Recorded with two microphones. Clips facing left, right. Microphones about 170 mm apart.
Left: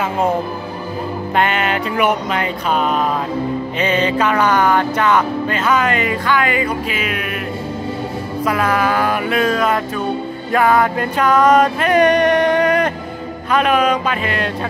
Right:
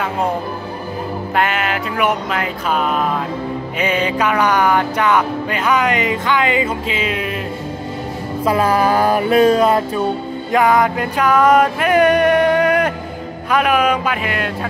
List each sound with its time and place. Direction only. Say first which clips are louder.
1.3 s music: left 1 dB; 5° right (ahead or behind)
3.8 s speech: left 1 dB; 10° right (ahead or behind); by 7.2 s 25° right (ahead or behind)
8.5 s music: right 3 dB; 30° right (ahead or behind)
10.5 s music: even; 15° right (ahead or behind)
13.5 s speech: even; 10° right (ahead or behind)